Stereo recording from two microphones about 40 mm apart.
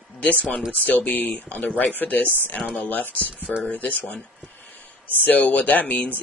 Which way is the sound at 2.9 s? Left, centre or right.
Left.